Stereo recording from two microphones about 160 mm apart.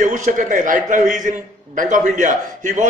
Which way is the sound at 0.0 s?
55° right (ahead or behind).